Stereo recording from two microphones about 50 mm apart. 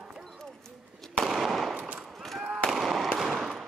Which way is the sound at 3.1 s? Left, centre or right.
Centre.